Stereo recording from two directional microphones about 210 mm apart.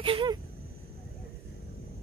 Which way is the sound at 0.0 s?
25° right (ahead or behind).